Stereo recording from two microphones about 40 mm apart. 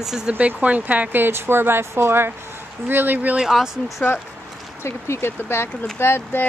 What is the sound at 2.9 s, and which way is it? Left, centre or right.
Speech, right.